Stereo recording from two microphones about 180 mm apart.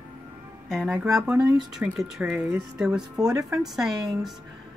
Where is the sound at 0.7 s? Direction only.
5° right (ahead or behind).